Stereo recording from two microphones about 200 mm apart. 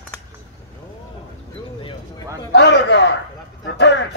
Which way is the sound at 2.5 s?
60° left (ahead or behind).